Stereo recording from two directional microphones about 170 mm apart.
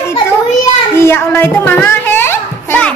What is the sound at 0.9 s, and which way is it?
A child's voice, 15° left (ahead or behind).